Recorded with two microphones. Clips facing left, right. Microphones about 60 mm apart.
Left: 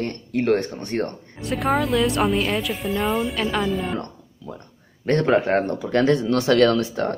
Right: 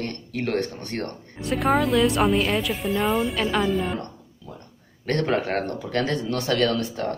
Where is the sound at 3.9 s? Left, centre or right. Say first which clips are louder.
Left 3 dB; left.